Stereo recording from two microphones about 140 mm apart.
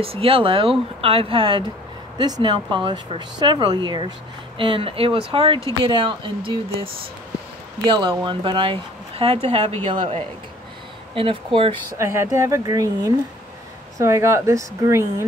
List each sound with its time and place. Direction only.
0.0 s speech: 40° right (ahead or behind)
12.0 s speech: 20° right (ahead or behind)